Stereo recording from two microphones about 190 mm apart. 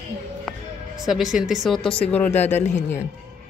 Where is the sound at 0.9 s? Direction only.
Centre (ahead or behind).